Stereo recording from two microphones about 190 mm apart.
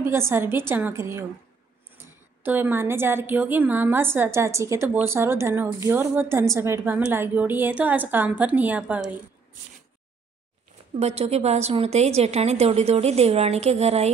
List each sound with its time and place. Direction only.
0.0 s speech: 15° right (ahead or behind)
11.0 s a woman's voice: 35° right (ahead or behind)